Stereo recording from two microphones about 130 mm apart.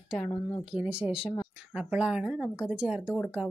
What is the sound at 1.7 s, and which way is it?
A woman's voice, 10° right (ahead or behind).